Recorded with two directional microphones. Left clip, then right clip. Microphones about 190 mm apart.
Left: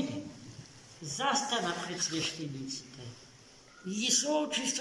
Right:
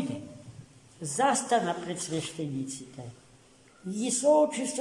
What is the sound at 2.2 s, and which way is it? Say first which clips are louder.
Speech: right 1 dB; centre (ahead or behind).